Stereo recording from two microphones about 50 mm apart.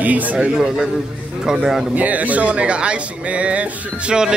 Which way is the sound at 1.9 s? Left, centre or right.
Right.